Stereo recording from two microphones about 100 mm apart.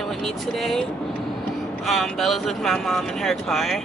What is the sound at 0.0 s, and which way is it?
Speech, centre (ahead or behind).